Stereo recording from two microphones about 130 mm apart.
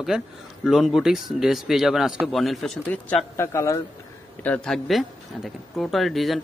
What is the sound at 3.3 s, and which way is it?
Speech, 25° left (ahead or behind).